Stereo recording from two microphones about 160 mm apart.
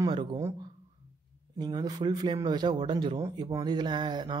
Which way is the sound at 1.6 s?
25° right (ahead or behind).